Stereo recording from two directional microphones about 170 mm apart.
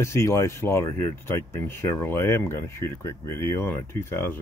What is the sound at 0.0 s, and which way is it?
Speech, 15° left (ahead or behind).